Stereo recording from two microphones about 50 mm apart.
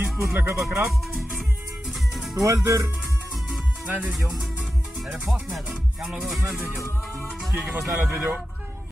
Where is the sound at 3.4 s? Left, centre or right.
Centre.